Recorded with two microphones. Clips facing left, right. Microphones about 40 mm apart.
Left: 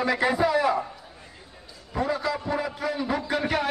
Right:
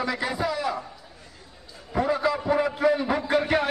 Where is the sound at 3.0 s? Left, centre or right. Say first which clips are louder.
Right 2 dB; right.